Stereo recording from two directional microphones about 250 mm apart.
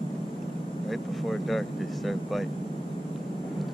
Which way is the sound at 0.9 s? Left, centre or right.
Centre.